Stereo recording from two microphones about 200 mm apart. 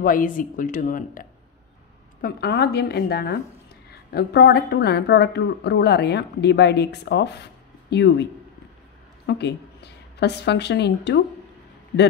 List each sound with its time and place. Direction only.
0.0 s speech: 45° left (ahead or behind)
2.2 s a woman's voice: 55° left (ahead or behind)